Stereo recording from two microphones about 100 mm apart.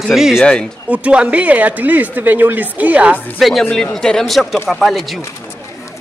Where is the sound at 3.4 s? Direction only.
Centre (ahead or behind).